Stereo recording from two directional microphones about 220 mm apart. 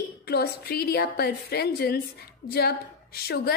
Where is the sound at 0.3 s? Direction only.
45° left (ahead or behind).